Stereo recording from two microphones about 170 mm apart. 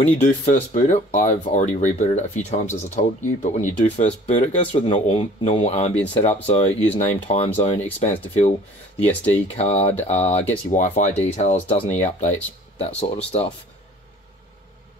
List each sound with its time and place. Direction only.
0.5 s speech: 45° left (ahead or behind)
9.0 s speech: 10° left (ahead or behind)
9.6 s speech: 40° left (ahead or behind)